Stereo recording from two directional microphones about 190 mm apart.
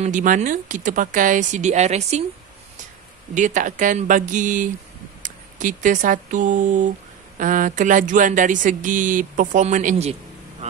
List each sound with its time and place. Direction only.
0.0 s speech: 45° right (ahead or behind)
3.3 s speech: 40° right (ahead or behind)
10.6 s vehicle: 35° right (ahead or behind)